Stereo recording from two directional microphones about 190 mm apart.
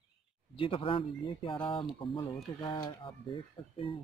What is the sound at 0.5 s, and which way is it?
Speech, 30° left (ahead or behind).